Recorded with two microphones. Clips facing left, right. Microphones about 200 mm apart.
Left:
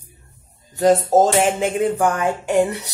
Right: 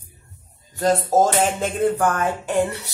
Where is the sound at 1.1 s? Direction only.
15° left (ahead or behind).